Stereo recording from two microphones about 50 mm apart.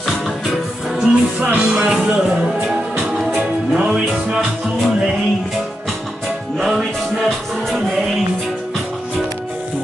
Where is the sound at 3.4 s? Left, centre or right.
Right.